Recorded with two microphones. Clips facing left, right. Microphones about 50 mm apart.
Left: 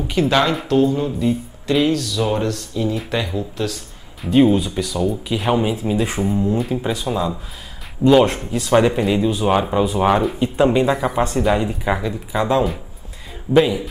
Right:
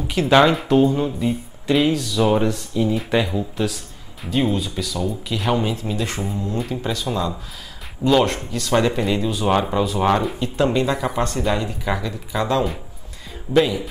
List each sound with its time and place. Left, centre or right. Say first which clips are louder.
0.0 s a sound: left 3 dB; centre
0.3 s speech: right 5 dB; centre
4.3 s speech: left 7 dB; centre